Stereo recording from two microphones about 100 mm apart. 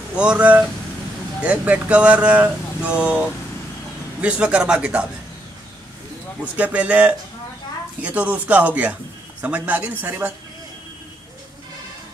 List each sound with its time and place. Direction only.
0.1 s speech: 10° right (ahead or behind)
6.4 s speech: 15° right (ahead or behind)